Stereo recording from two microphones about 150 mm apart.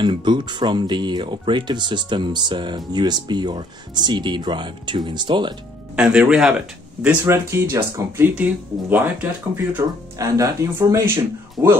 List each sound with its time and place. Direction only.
0.0 s speech: 30° right (ahead or behind)
5.9 s speech: 5° right (ahead or behind)
7.2 s speech: 20° right (ahead or behind)
9.8 s speech: 20° right (ahead or behind)
11.6 s speech: 5° right (ahead or behind)